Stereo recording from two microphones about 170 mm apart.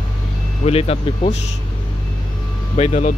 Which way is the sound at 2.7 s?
40° left (ahead or behind).